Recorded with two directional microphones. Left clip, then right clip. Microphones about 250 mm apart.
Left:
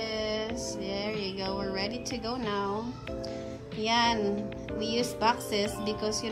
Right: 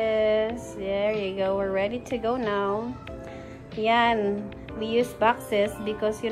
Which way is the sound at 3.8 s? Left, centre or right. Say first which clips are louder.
Right 5 dB; centre.